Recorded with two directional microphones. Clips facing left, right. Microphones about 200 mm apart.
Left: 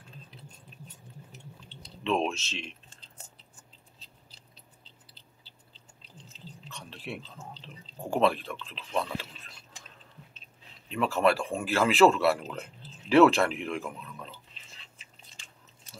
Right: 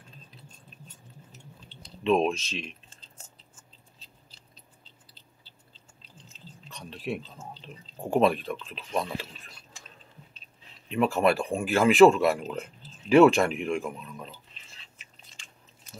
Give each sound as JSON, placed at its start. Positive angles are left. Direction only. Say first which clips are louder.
{"t": 2.0, "sound": "speech", "louder": "right 5 dB", "side_deg": -15}
{"t": 6.7, "sound": "a sound", "louder": "right 7 dB", "side_deg": -15}
{"t": 7.6, "sound": "speech", "louder": "right 3 dB", "side_deg": -15}
{"t": 11.0, "sound": "speech", "louder": "right 2 dB", "side_deg": -15}